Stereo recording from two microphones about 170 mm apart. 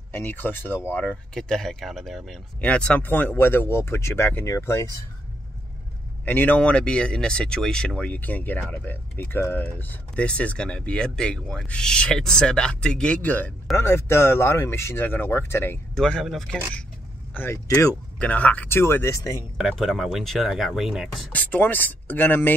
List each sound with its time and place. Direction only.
0.1 s speech: 10° left (ahead or behind)
6.2 s speech: 10° left (ahead or behind)
17.3 s speech: 15° left (ahead or behind)
19.6 s speech: centre (ahead or behind)